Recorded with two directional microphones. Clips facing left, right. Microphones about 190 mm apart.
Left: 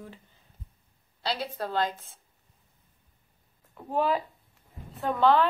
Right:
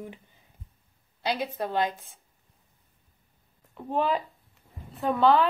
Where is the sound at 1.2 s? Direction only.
15° right (ahead or behind).